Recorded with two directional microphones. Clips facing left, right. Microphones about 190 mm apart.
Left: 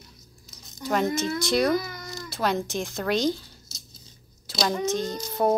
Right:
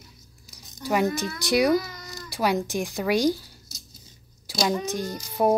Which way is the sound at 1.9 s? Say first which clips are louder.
Left 3 dB; 20° left (ahead or behind).